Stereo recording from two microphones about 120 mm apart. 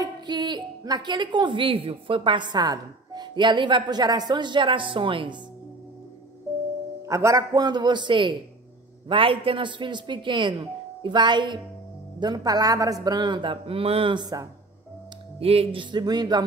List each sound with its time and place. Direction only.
0.0 s a woman's voice: 40° right (ahead or behind)
7.1 s a woman's voice: 25° right (ahead or behind); by 14.1 s 50° right (ahead or behind)
14.1 s a woman's voice: 35° right (ahead or behind)
15.3 s a woman's voice: 55° right (ahead or behind); by 16.4 s 35° right (ahead or behind)